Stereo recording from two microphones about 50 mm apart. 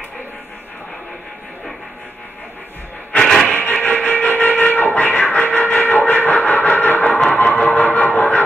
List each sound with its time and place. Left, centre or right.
3.3 s music: centre
3.5 s music: left